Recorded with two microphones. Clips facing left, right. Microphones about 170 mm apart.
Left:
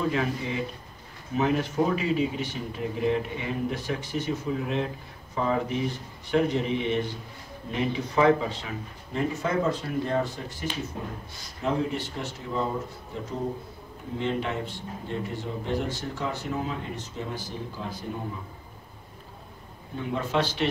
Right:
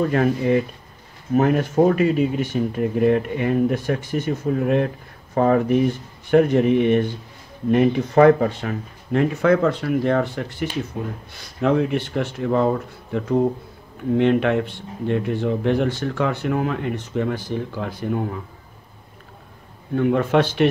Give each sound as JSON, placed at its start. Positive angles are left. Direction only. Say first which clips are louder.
{"t": 0.0, "sound": "speech", "louder": "right 8 dB", "side_deg": -55}
{"t": 20.0, "sound": "speech", "louder": "right 9 dB", "side_deg": -60}